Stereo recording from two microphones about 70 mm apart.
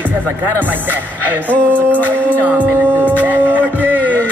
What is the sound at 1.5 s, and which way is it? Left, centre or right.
Music, left.